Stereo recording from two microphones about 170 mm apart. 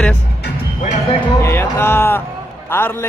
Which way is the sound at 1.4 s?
15° left (ahead or behind).